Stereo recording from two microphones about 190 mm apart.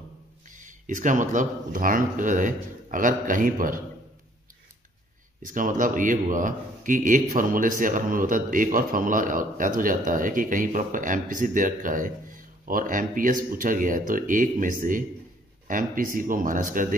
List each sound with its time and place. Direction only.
0.5 s speech: 40° right (ahead or behind)
5.4 s speech: 45° right (ahead or behind)